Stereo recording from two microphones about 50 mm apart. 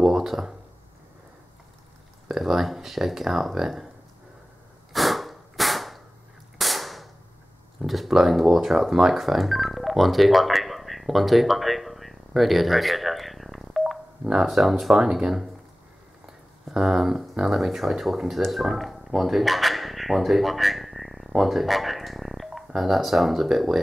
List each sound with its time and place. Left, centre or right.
0.0 s a sound: centre
2.2 s speech: centre
4.9 s a sound: centre
6.6 s cap gun: centre
7.8 s speech: centre
15.0 s speech: centre
16.6 s speech: centre